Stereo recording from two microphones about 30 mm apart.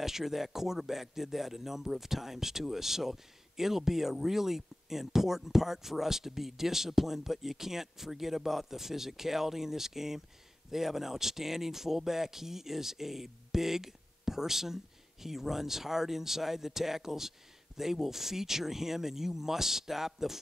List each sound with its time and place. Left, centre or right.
0.0 s speech: centre